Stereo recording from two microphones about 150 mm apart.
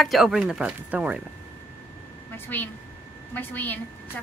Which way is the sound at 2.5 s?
10° left (ahead or behind).